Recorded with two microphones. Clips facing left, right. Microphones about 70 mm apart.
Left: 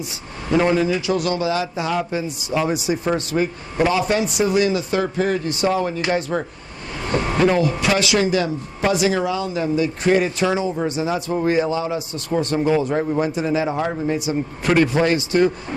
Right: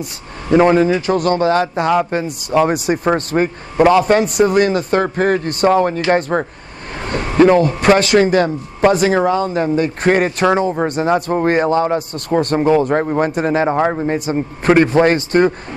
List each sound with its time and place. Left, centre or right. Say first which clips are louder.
0.5 s speech: right 6 dB; right